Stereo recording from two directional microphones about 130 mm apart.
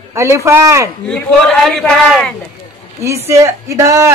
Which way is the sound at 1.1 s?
5° left (ahead or behind).